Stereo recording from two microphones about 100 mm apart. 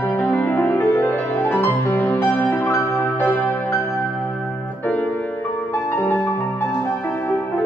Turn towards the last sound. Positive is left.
turn(degrees=25)  # may be behind; listen again after turning